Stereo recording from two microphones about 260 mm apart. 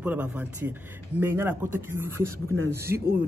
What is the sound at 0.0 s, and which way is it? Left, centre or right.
A man's voice, centre.